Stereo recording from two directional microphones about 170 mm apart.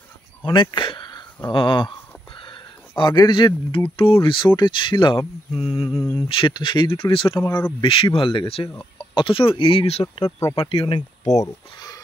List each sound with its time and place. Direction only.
0.4 s speech: 30° left (ahead or behind)
2.3 s a sound: 30° left (ahead or behind)
3.0 s speech: 25° left (ahead or behind)
7.3 s speech: 10° left (ahead or behind)
7.8 s speech: 30° left (ahead or behind)
8.6 s speech: 5° left (ahead or behind)
9.1 s speech: 30° left (ahead or behind)
11.4 s speech: 20° left (ahead or behind)